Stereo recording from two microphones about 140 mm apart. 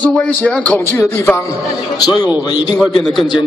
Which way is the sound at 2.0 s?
30° left (ahead or behind).